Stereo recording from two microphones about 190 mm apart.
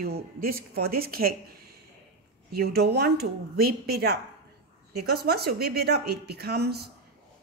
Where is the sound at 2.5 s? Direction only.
55° right (ahead or behind).